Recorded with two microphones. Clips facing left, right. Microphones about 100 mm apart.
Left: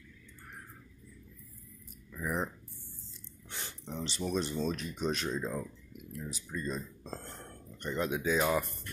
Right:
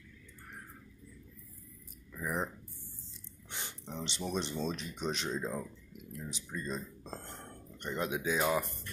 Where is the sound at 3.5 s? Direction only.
20° right (ahead or behind).